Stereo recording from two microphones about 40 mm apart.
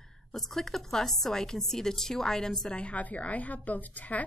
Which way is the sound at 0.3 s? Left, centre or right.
Centre.